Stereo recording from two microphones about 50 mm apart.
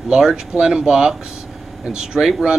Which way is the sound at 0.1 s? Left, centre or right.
Centre.